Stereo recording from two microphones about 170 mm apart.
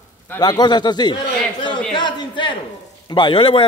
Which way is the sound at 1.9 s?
25° left (ahead or behind).